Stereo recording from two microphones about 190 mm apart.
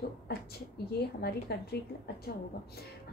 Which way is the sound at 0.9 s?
55° left (ahead or behind).